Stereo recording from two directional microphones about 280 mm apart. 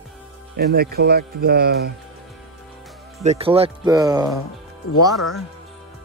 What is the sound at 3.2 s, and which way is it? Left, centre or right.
Speech, right.